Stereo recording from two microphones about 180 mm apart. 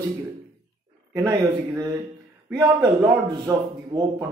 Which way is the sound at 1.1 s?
20° right (ahead or behind).